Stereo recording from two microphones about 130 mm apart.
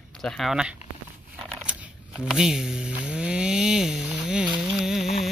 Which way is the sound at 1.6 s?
5° right (ahead or behind).